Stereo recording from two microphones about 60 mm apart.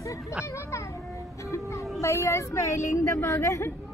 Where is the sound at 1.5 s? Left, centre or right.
Left.